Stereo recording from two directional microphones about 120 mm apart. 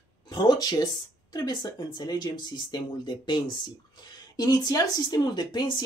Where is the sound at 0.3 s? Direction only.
35° left (ahead or behind).